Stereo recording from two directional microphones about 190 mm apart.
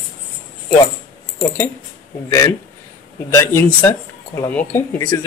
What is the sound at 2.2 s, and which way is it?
Speech, 15° left (ahead or behind).